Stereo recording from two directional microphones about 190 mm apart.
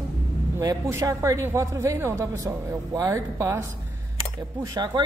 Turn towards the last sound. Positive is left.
turn(degrees=-20)  # may be behind; listen again after turning